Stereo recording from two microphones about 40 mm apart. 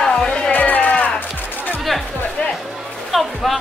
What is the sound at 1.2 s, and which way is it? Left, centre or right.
Music, left.